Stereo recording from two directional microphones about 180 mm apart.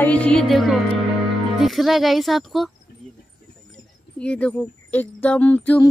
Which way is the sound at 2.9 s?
60° left (ahead or behind).